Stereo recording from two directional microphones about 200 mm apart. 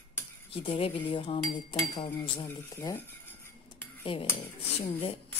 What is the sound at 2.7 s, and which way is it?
Speech, 20° left (ahead or behind).